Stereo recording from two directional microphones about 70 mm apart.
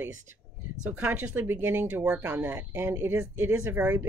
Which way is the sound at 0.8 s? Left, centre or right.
Right.